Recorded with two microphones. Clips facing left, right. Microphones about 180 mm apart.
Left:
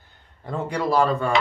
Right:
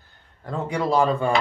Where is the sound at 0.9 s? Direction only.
20° right (ahead or behind).